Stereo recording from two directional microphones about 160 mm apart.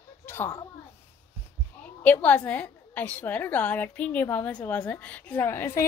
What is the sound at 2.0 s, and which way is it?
A woman's voice, 10° left (ahead or behind).